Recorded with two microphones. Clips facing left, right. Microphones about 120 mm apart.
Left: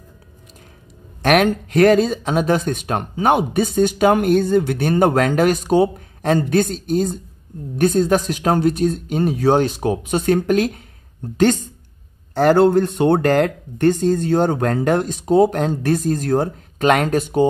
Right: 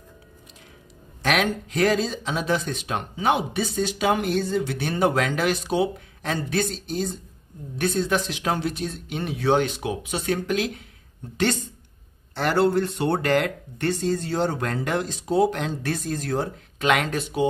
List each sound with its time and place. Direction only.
1.2 s speech: 55° left (ahead or behind)